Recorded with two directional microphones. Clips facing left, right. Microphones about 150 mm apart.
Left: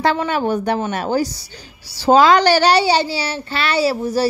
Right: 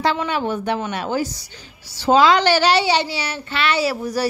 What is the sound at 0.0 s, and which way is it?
A woman's voice, 50° left (ahead or behind).